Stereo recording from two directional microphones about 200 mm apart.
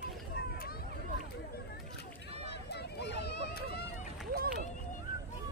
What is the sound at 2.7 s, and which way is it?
Run, 55° left (ahead or behind).